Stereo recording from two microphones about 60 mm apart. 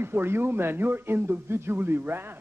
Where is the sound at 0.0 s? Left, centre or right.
Right.